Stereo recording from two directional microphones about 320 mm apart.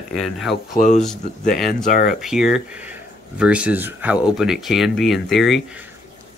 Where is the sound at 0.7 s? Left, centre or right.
Left.